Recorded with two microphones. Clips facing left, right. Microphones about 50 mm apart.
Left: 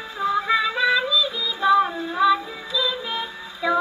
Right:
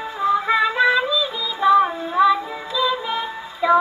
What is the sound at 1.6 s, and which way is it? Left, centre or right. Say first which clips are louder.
Child singing: right 3 dB; centre.